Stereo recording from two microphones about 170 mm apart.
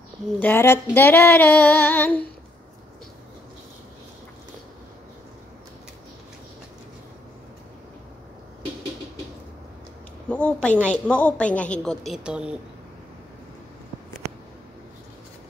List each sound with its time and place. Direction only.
0.4 s a woman's voice: 15° left (ahead or behind)
10.3 s a woman's voice: 5° left (ahead or behind)